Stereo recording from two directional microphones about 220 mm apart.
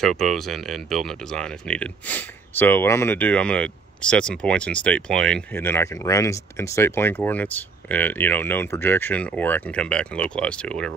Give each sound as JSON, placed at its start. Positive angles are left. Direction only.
{"t": 0.0, "sound": "speech", "side_deg": 0}